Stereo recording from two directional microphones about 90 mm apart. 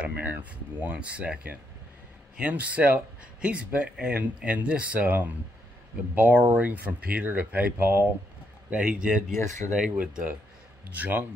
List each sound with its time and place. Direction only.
0.0 s speech: 15° right (ahead or behind)
8.6 s speech: 10° right (ahead or behind)
9.3 s speech: 30° left (ahead or behind)
9.9 s speech: 15° right (ahead or behind)